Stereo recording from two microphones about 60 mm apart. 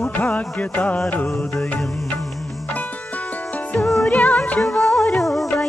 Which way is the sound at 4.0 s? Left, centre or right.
Left.